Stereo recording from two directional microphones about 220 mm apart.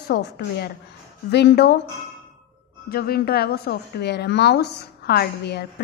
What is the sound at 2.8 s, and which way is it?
A woman's voice, 45° left (ahead or behind).